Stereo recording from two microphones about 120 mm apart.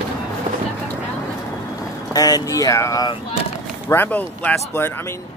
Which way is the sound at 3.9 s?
15° left (ahead or behind).